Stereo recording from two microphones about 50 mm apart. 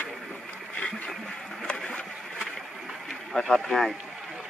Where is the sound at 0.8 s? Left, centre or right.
Left.